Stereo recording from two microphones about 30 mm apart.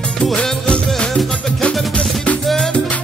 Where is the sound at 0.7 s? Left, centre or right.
Left.